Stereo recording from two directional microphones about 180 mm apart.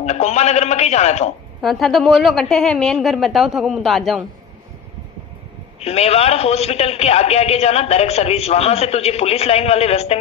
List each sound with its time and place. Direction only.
0.0 s a man's voice: 35° left (ahead or behind)
1.6 s a woman's voice: centre (ahead or behind)
5.8 s a man's voice: 35° left (ahead or behind)